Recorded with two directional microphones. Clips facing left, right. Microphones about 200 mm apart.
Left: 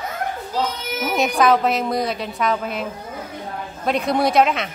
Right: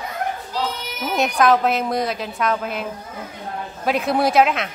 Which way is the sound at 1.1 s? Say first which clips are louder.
Even; centre (ahead or behind).